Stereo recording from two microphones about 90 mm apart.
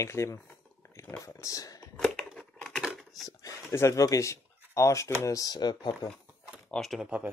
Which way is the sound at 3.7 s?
30° left (ahead or behind).